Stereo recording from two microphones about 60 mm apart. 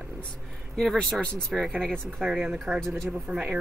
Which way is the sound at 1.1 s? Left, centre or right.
Centre.